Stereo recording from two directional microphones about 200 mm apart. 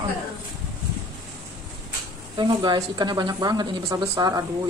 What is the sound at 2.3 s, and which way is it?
A woman's voice, 20° right (ahead or behind).